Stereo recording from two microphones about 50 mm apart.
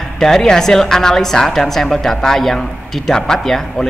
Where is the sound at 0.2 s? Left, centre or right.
Centre.